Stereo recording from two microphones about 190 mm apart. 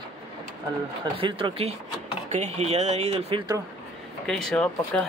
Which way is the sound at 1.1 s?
30° right (ahead or behind).